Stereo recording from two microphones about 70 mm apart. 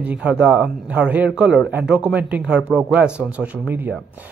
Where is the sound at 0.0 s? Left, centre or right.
Centre.